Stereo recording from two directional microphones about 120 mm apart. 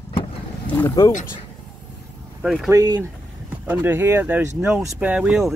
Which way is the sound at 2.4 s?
Centre (ahead or behind).